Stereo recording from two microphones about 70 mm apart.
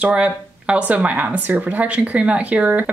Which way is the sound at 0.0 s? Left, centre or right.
Centre.